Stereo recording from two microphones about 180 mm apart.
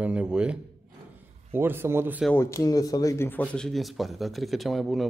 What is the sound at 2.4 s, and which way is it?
Speech, 15° left (ahead or behind).